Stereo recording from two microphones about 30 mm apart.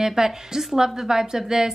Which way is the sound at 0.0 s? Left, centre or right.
Centre.